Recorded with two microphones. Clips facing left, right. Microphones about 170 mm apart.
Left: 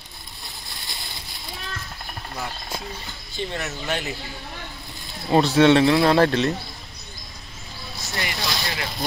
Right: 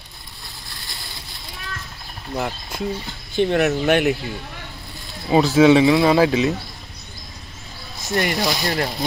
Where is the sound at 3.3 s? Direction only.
65° right (ahead or behind).